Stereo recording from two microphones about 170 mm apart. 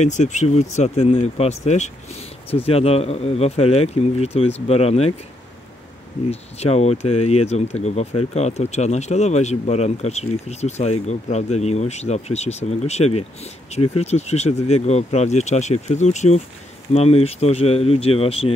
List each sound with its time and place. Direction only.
0.0 s speech: 45° left (ahead or behind)
6.6 s speech: 40° left (ahead or behind)